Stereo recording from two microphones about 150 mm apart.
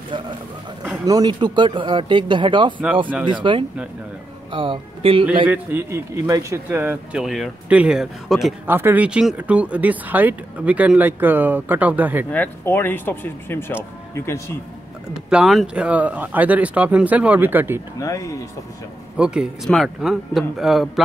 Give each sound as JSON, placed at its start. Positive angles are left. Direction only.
{"t": 1.0, "sound": "speech", "side_deg": -25}
{"t": 5.5, "sound": "speech", "side_deg": -15}
{"t": 8.6, "sound": "speech", "side_deg": -15}
{"t": 12.3, "sound": "speech", "side_deg": 10}
{"t": 15.2, "sound": "speech", "side_deg": -5}
{"t": 18.0, "sound": "speech", "side_deg": 20}
{"t": 19.1, "sound": "a man's voice", "side_deg": -5}